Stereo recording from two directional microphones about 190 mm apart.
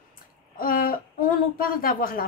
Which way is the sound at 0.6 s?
50° left (ahead or behind).